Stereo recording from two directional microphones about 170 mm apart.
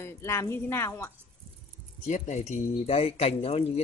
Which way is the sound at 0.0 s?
15° left (ahead or behind).